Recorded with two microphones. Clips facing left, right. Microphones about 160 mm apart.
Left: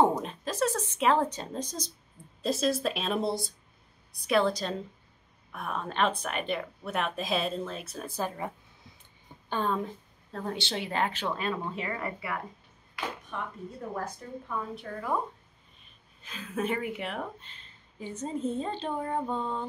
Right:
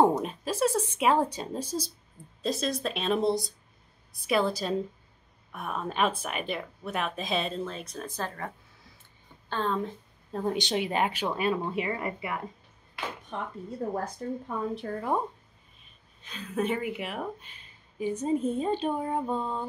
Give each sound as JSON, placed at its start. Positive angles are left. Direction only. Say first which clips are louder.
{"t": 0.0, "sound": "a woman's voice", "louder": "right 2 dB", "side_deg": -10}
{"t": 9.5, "sound": "a woman's voice", "louder": "even", "side_deg": 10}
{"t": 10.3, "sound": "a woman's voice", "louder": "right 5 dB", "side_deg": -15}
{"t": 16.2, "sound": "speech", "louder": "right 2 dB", "side_deg": 0}